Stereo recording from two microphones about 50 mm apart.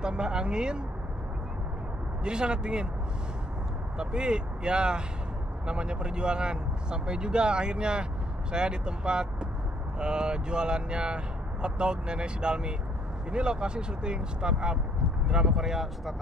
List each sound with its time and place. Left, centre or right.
0.0 s speech: centre
2.2 s speech: centre
4.0 s speech: centre